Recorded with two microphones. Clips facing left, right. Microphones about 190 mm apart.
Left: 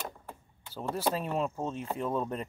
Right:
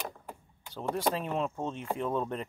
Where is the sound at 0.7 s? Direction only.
5° left (ahead or behind).